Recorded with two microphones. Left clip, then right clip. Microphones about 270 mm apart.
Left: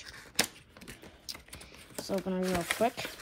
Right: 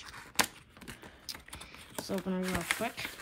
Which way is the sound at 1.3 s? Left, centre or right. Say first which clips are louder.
Even; centre.